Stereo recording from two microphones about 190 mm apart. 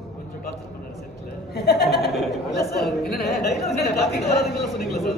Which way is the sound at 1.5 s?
55° left (ahead or behind).